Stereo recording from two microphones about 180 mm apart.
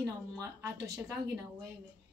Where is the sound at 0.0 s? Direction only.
15° right (ahead or behind).